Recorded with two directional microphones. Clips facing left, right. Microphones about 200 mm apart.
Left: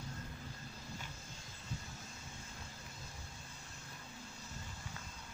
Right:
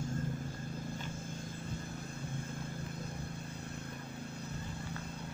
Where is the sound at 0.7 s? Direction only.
55° right (ahead or behind).